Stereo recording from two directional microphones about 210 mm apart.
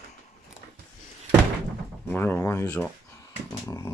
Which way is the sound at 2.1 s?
10° left (ahead or behind).